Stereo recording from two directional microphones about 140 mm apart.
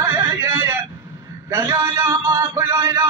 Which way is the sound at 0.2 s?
20° right (ahead or behind).